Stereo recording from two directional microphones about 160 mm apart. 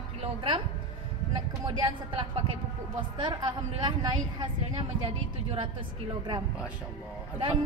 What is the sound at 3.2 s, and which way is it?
A woman's voice, 30° right (ahead or behind).